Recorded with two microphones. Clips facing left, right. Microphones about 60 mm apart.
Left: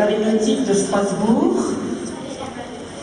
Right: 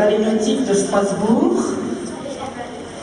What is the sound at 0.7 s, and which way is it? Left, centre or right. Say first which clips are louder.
Speech: right 1 dB; right.